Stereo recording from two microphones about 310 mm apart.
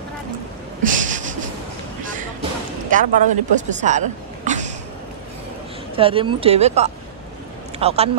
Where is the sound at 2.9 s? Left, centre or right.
Right.